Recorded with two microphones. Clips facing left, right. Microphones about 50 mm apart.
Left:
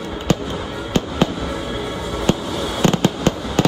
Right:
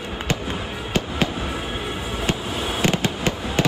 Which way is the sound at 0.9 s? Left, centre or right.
Right.